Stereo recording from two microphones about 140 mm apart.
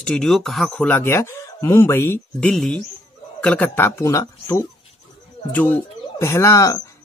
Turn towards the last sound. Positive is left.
turn(degrees=20)  # may be behind; listen again after turning